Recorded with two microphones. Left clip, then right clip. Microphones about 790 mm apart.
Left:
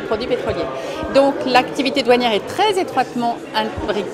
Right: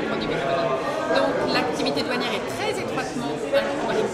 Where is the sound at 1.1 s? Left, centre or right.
Left.